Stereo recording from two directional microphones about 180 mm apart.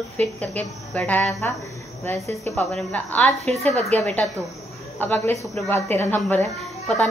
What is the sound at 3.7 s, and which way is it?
Speech, 35° right (ahead or behind).